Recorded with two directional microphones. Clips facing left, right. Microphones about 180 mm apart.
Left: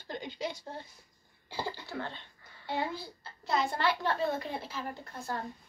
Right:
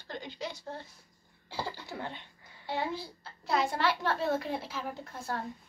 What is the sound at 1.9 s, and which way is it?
A child's voice, 15° right (ahead or behind).